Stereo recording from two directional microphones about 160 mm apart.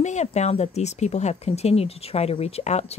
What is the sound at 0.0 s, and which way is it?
Speech, 45° left (ahead or behind).